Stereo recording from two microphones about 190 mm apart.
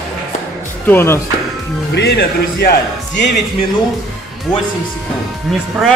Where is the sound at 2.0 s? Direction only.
60° left (ahead or behind).